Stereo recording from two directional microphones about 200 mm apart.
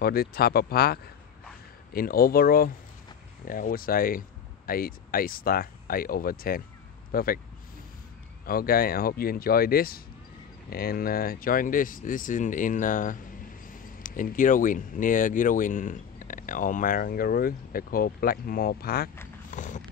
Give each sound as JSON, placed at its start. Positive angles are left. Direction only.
{"t": 0.0, "sound": "speech", "side_deg": 50}
{"t": 8.5, "sound": "speech", "side_deg": 45}
{"t": 19.5, "sound": "a sound", "side_deg": 40}